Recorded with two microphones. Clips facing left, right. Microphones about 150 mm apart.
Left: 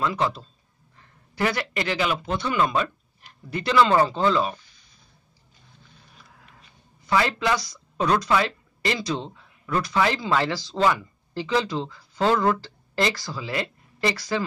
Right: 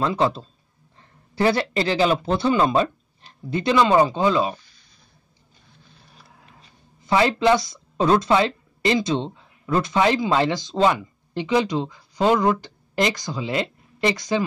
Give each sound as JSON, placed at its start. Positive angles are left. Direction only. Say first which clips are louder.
{"t": 0.0, "sound": "a man's voice", "louder": "right 4 dB", "side_deg": -25}
{"t": 7.0, "sound": "speech", "louder": "right 4 dB", "side_deg": -25}